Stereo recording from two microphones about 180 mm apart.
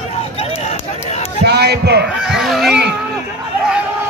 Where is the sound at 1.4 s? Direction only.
65° right (ahead or behind).